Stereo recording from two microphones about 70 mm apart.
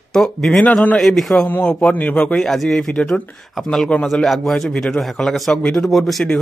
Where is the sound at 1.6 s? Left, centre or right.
Centre.